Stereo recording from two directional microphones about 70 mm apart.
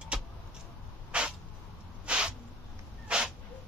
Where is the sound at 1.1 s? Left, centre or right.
Centre.